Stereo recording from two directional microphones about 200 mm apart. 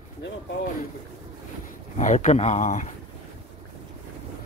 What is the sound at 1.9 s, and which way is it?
Speech, 35° left (ahead or behind).